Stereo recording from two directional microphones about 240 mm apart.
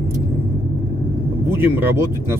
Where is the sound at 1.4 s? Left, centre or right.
Centre.